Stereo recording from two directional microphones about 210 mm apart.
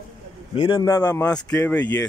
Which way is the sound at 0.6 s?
20° left (ahead or behind).